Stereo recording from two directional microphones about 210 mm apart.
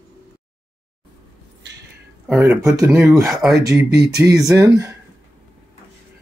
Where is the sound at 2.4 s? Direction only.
15° right (ahead or behind).